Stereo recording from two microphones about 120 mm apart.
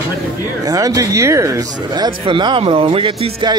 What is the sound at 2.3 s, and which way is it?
Speech, 45° right (ahead or behind).